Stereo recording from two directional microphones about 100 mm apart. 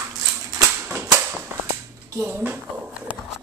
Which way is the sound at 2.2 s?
20° right (ahead or behind).